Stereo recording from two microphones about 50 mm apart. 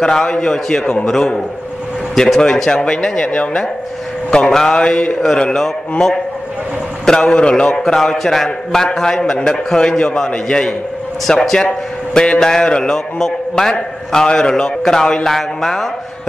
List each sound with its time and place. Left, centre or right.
0.0 s a man's voice: centre
2.1 s a man's voice: centre; by 5.1 s left
5.2 s a man's voice: centre
7.8 s a man's voice: centre
8.5 s a man's voice: centre